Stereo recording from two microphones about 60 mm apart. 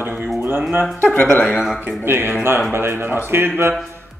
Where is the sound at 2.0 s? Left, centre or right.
Right.